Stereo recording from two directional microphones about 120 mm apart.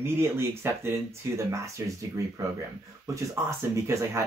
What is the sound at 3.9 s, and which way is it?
Speech, 25° right (ahead or behind).